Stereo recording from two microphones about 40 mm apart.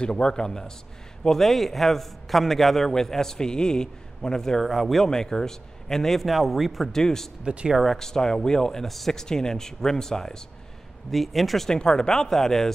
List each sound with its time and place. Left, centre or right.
0.0 s a man's voice: left
4.6 s speech: centre
5.0 s a man's voice: centre
6.9 s a man's voice: centre
7.4 s speech: right
7.8 s a man's voice: centre
9.1 s a man's voice: centre
11.1 s speech: centre
11.7 s a man's voice: centre